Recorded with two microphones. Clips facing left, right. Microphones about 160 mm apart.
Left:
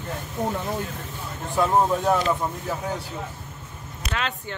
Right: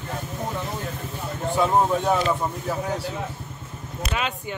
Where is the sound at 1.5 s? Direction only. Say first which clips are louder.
Even; centre (ahead or behind).